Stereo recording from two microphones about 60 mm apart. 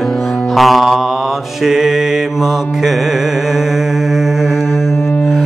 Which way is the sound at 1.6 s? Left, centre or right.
Centre.